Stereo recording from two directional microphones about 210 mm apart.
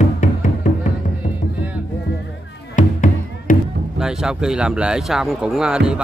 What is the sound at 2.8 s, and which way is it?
Music, 35° left (ahead or behind).